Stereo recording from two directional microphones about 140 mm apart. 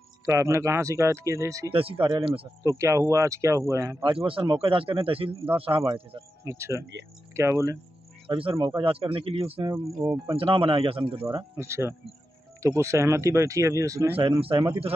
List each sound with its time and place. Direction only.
0.2 s speech: 20° right (ahead or behind)
1.7 s speech: 40° right (ahead or behind)
2.6 s speech: 20° right (ahead or behind)
4.0 s speech: 40° right (ahead or behind)
6.4 s speech: 20° right (ahead or behind)
8.3 s speech: 40° right (ahead or behind)
10.0 s speech: centre (ahead or behind)
10.3 s speech: 40° right (ahead or behind)
11.5 s speech: 20° right (ahead or behind)
14.1 s speech: 40° right (ahead or behind)